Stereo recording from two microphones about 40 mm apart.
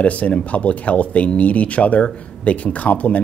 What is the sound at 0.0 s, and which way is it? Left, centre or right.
Speech, left.